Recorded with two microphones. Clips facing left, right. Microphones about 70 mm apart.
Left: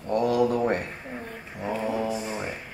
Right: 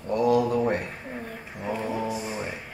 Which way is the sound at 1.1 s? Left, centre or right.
Centre.